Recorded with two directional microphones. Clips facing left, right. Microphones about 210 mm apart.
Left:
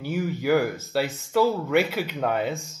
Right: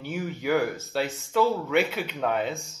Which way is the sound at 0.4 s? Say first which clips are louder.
Left 2 dB; centre (ahead or behind).